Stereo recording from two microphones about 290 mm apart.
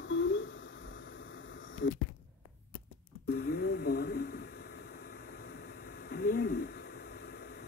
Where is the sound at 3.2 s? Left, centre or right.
Left.